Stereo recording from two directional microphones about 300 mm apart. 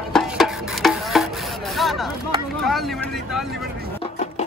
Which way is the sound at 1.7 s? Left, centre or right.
Centre.